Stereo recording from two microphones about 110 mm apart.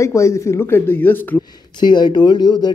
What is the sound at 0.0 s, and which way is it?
Speech, 25° left (ahead or behind).